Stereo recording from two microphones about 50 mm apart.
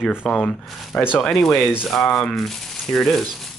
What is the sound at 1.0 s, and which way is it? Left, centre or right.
Speech, centre.